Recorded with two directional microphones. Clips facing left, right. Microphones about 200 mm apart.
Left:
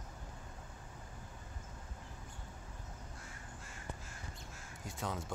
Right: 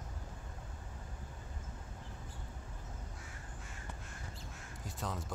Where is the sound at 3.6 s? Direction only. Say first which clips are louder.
Left 3 dB; centre (ahead or behind).